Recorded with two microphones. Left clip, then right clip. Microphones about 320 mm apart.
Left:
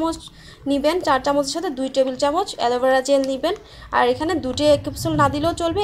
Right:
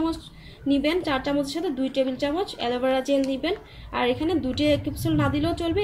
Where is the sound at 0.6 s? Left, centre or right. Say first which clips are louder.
Left 5 dB; centre.